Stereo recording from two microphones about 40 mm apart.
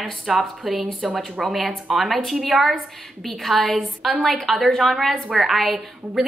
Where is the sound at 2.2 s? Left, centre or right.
Centre.